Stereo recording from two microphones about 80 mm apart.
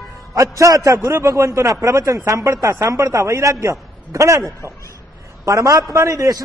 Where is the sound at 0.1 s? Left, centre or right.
Right.